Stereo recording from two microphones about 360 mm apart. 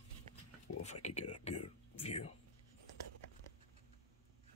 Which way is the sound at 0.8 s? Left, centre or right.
Centre.